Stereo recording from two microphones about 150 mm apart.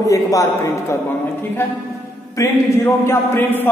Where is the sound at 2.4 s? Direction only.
20° left (ahead or behind).